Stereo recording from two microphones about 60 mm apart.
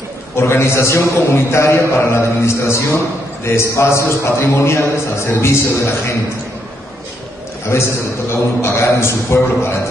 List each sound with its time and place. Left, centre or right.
0.4 s a man's voice: left
7.7 s a man's voice: left